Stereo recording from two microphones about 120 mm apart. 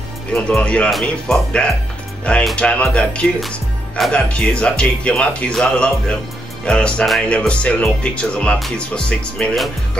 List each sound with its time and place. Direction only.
0.3 s speech: 10° left (ahead or behind)